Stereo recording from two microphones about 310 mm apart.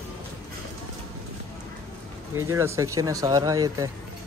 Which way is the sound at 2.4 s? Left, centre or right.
Centre.